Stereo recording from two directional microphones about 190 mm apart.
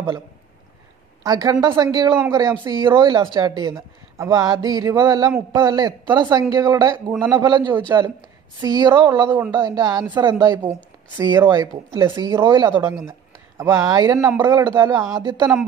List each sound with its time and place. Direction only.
1.2 s speech: 20° right (ahead or behind)
7.5 s speech: 25° right (ahead or behind)